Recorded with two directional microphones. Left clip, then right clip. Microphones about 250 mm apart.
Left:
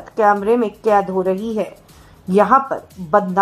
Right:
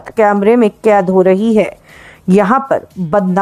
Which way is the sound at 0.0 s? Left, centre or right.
Right.